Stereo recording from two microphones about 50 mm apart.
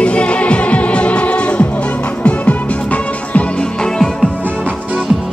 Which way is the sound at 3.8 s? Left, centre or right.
Centre.